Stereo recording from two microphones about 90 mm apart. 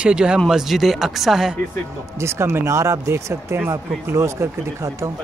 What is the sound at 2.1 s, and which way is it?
Speech, 30° right (ahead or behind).